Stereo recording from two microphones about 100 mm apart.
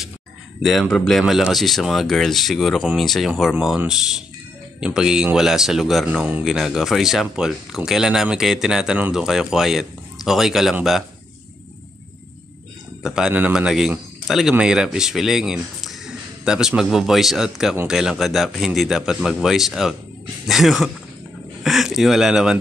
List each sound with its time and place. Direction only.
0.6 s speech: centre (ahead or behind)
13.0 s a man's voice: 5° right (ahead or behind)